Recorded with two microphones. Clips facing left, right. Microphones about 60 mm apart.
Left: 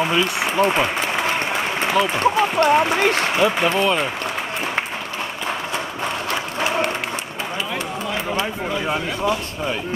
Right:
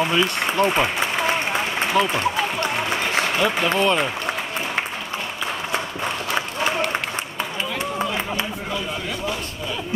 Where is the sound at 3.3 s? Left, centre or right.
Centre.